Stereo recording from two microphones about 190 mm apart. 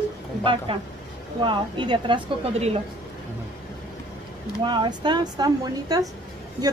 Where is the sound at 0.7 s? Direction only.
30° right (ahead or behind).